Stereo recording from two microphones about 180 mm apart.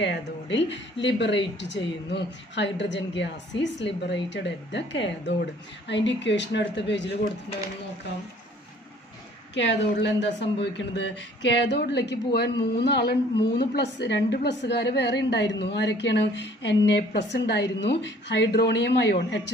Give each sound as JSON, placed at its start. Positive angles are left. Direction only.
{"t": 0.0, "sound": "speech", "side_deg": 75}
{"t": 9.5, "sound": "speech", "side_deg": 80}